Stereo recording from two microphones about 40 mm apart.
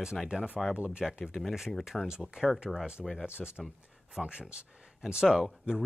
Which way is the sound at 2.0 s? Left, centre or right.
Centre.